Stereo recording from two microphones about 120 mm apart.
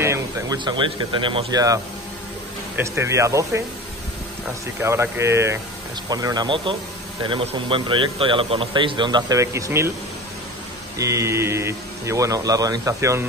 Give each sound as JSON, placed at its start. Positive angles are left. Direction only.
{"t": 0.0, "sound": "a sound", "side_deg": -25}
{"t": 0.7, "sound": "a man's voice", "side_deg": -45}
{"t": 1.5, "sound": "speech", "side_deg": -30}
{"t": 4.8, "sound": "speech", "side_deg": -20}
{"t": 6.0, "sound": "a man's voice", "side_deg": -35}
{"t": 9.4, "sound": "speech", "side_deg": -25}
{"t": 11.0, "sound": "speech", "side_deg": -25}